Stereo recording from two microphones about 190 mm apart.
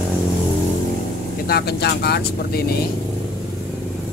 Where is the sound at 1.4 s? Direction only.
55° left (ahead or behind).